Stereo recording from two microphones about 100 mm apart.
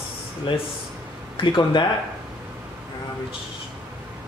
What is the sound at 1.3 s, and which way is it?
Speech, 55° left (ahead or behind).